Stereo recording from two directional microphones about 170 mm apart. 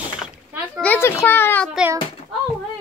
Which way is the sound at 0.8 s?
10° left (ahead or behind).